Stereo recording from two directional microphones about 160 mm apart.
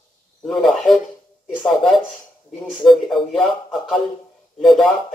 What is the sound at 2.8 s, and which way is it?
Speech, centre (ahead or behind).